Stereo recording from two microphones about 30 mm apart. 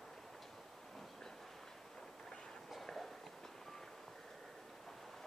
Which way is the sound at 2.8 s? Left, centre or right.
Centre.